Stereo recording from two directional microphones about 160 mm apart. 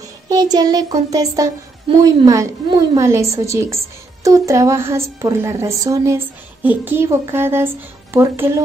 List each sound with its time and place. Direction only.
0.3 s child singing: 25° right (ahead or behind)
3.0 s a woman's voice: 20° right (ahead or behind)